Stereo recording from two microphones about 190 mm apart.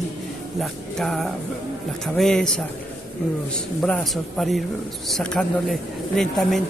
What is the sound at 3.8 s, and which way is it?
A man's voice, centre (ahead or behind).